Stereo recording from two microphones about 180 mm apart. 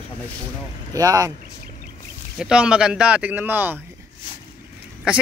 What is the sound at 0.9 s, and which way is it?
Speech, 20° right (ahead or behind).